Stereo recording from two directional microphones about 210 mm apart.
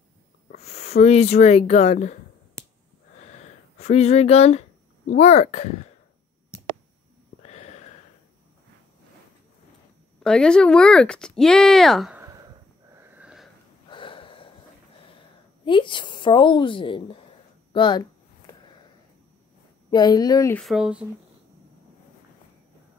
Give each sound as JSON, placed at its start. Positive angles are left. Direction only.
{"t": 0.5, "sound": "speech", "side_deg": 30}
{"t": 3.2, "sound": "wheeze", "side_deg": 30}
{"t": 3.8, "sound": "speech", "side_deg": 30}
{"t": 7.4, "sound": "a sound", "side_deg": 30}
{"t": 10.2, "sound": "speech", "side_deg": 5}
{"t": 12.9, "sound": "wheeze", "side_deg": -10}
{"t": 13.8, "sound": "wheeze", "side_deg": 25}
{"t": 15.6, "sound": "a woman's voice", "side_deg": 25}
{"t": 19.9, "sound": "a woman's voice", "side_deg": 20}
{"t": 20.6, "sound": "speech", "side_deg": 0}